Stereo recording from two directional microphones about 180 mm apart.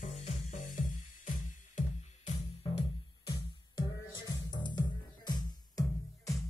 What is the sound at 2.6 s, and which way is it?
Music, 30° left (ahead or behind).